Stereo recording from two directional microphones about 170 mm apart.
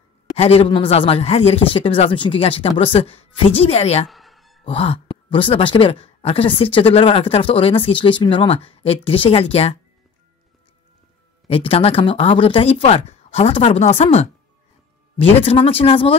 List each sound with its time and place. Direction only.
0.4 s a woman's voice: 35° left (ahead or behind)
4.1 s a sound: centre (ahead or behind)
4.6 s a woman's voice: 35° left (ahead or behind)
11.4 s a woman's voice: 35° left (ahead or behind)